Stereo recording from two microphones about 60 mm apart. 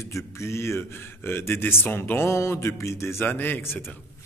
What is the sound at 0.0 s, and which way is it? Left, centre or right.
A man's voice, left.